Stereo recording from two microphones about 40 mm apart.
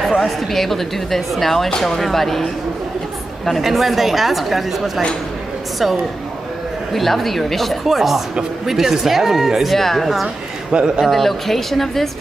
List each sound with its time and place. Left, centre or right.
0.2 s a woman's voice: centre
3.4 s a woman's voice: centre
6.9 s a woman's voice: centre
9.8 s speech: centre
10.2 s a man's voice: right
11.1 s a woman's voice: centre